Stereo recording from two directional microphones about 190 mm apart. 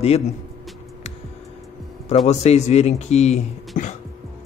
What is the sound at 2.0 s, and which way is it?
Speech, 35° left (ahead or behind).